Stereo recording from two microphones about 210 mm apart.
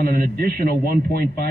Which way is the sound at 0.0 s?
45° right (ahead or behind).